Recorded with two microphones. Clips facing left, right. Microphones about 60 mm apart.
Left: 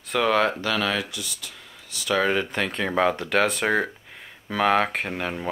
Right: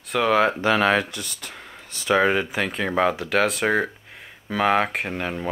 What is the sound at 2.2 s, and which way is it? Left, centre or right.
Speech, centre.